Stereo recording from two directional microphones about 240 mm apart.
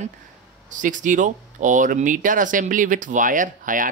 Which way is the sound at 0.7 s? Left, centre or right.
Right.